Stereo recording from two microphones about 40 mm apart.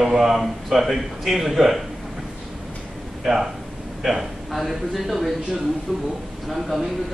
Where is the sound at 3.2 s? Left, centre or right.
Centre.